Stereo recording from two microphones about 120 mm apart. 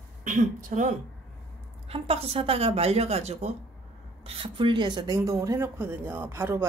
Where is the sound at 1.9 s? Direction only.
55° right (ahead or behind).